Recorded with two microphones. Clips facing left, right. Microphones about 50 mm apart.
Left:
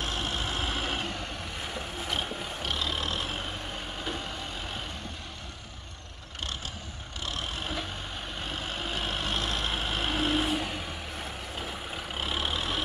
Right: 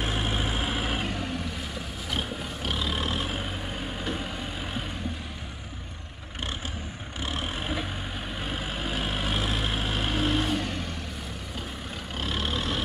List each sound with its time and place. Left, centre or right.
0.0 s vehicle: centre
1.6 s vehicle: centre
7.2 s vehicle: centre
12.2 s vehicle: centre